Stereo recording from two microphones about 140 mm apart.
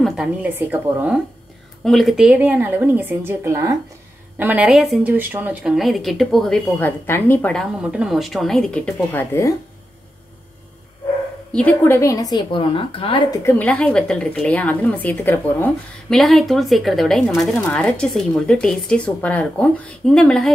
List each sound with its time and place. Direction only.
0.0 s speech: 5° right (ahead or behind)
1.9 s speech: centre (ahead or behind); by 3.7 s 20° right (ahead or behind)
4.4 s speech: 10° right (ahead or behind)
6.8 s a woman's voice: 15° left (ahead or behind)
7.8 s speech: 5° right (ahead or behind); by 9.5 s 15° left (ahead or behind)
11.5 s a woman's voice: 15° left (ahead or behind); by 13.2 s 40° left (ahead or behind)
13.3 s a woman's voice: 20° left (ahead or behind)
16.1 s speech: centre (ahead or behind)